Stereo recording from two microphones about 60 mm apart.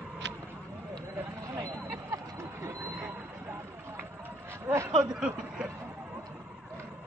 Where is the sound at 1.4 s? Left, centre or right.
Right.